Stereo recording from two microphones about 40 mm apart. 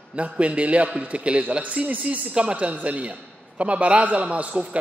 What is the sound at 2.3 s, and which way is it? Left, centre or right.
A man's voice, right.